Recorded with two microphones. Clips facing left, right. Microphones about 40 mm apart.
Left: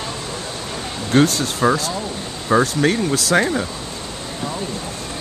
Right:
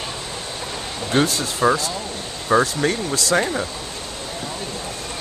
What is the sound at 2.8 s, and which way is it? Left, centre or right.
Speech, centre.